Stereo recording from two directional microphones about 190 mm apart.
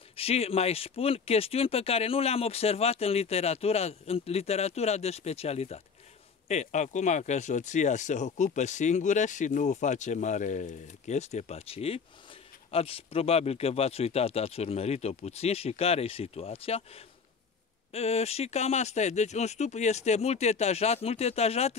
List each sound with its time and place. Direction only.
0.1 s speech: 30° left (ahead or behind)